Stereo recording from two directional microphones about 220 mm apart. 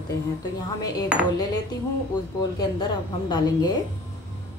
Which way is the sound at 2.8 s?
20° left (ahead or behind).